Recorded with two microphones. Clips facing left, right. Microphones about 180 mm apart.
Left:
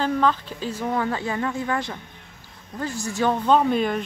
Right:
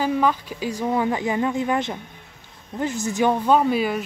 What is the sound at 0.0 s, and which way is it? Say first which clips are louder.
Speech: right 1 dB; 10° right (ahead or behind).